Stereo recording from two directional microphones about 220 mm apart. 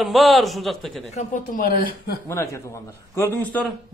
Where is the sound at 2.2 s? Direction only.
10° left (ahead or behind).